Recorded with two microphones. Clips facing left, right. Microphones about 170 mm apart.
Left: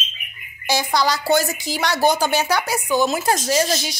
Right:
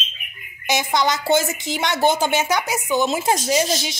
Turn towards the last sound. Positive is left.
turn(degrees=-20)  # may be behind; listen again after turning